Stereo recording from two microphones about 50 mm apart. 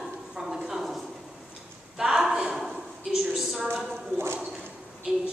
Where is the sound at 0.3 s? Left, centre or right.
Centre.